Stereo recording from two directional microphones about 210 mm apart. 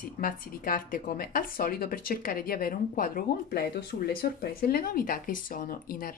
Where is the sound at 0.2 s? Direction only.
40° left (ahead or behind).